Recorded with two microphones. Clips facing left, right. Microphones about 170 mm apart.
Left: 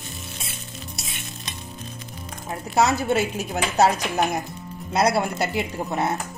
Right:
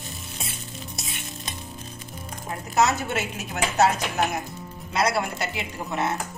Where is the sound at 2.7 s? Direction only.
35° left (ahead or behind).